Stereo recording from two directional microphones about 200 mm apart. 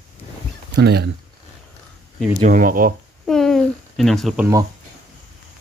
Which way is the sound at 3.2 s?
Centre (ahead or behind).